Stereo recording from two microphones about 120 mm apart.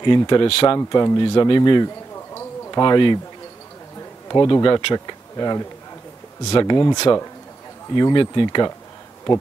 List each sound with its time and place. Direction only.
0.0 s speech: 35° left (ahead or behind)
0.5 s speech: 45° left (ahead or behind)
0.7 s speech: 35° left (ahead or behind)
2.1 s a sound: 25° left (ahead or behind)
2.8 s speech: 40° left (ahead or behind)
4.3 s speech: 35° left (ahead or behind)